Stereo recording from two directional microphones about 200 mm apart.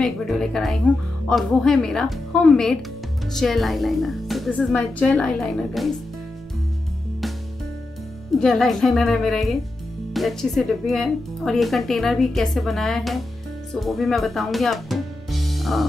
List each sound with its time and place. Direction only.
0.0 s speech: centre (ahead or behind)
8.4 s speech: centre (ahead or behind)